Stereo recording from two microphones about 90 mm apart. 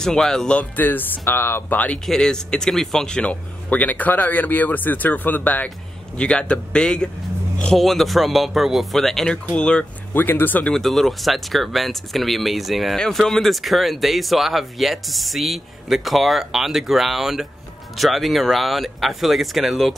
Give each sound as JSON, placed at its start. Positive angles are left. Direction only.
{"t": 0.0, "sound": "speech", "side_deg": 5}
{"t": 2.0, "sound": "speech", "side_deg": 5}
{"t": 10.1, "sound": "speech", "side_deg": 20}
{"t": 10.7, "sound": "speech", "side_deg": 5}